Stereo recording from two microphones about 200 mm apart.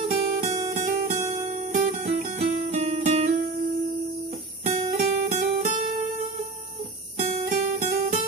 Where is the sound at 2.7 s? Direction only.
35° right (ahead or behind).